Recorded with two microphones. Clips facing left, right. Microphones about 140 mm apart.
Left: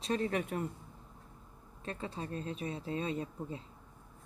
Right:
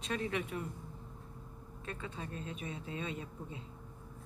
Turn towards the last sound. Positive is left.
turn(degrees=35)  # may be behind; listen again after turning